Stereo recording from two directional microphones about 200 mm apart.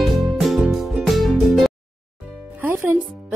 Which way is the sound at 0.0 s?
Centre (ahead or behind).